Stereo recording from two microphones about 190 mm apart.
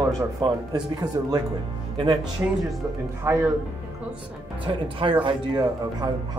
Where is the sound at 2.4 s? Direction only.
10° right (ahead or behind).